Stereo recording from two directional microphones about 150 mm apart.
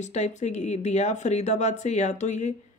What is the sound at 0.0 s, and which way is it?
Speech, 50° left (ahead or behind).